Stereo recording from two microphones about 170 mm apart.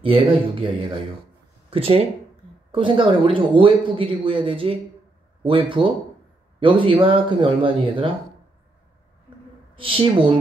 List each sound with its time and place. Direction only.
0.0 s speech: 30° right (ahead or behind)
1.7 s speech: 35° right (ahead or behind)
9.8 s speech: 30° right (ahead or behind)